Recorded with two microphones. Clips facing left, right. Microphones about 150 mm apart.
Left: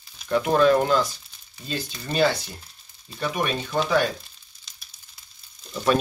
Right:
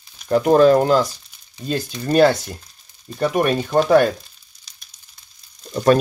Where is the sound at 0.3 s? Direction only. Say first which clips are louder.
Right 6 dB; 40° right (ahead or behind).